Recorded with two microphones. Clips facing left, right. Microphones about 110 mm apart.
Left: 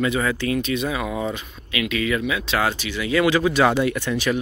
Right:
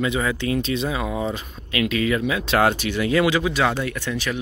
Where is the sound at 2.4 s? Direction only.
50° right (ahead or behind).